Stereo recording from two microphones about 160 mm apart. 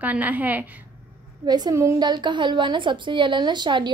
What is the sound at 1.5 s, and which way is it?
A woman's voice, 25° right (ahead or behind).